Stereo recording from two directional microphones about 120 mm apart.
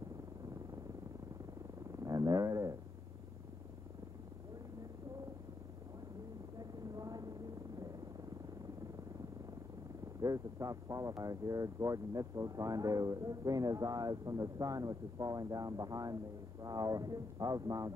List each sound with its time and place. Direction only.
1.9 s wild animals: 30° right (ahead or behind)
6.6 s a sound: 30° right (ahead or behind)
10.2 s speech: 30° right (ahead or behind)